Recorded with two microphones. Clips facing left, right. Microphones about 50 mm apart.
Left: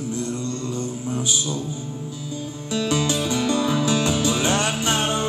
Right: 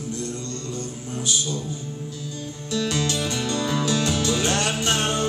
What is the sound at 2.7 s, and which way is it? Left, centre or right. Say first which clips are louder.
Music: left 2 dB; centre.